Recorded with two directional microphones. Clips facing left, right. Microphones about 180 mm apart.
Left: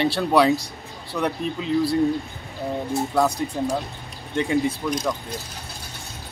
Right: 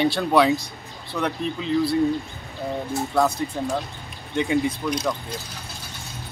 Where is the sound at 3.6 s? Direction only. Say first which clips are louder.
Left 2 dB; 10° left (ahead or behind).